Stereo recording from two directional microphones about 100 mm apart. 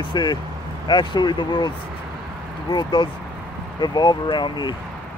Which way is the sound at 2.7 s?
45° left (ahead or behind).